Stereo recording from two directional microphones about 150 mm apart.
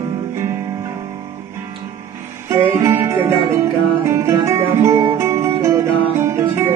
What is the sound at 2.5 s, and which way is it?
Music, 20° right (ahead or behind).